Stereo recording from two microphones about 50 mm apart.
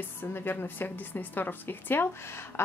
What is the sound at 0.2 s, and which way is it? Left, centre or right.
A woman's voice, left.